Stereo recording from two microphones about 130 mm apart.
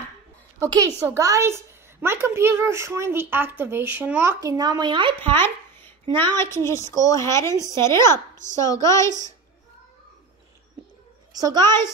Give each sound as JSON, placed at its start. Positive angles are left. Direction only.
{"t": 0.7, "sound": "a woman's voice", "side_deg": -30}
{"t": 5.2, "sound": "a woman's voice", "side_deg": 15}
{"t": 11.6, "sound": "a woman's voice", "side_deg": 20}